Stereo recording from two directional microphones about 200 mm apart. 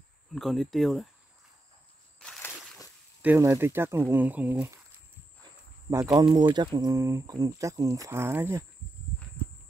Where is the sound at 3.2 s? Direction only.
10° right (ahead or behind).